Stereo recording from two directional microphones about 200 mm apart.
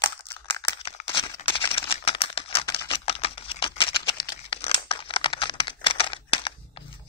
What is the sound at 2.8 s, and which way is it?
Typing, 30° left (ahead or behind).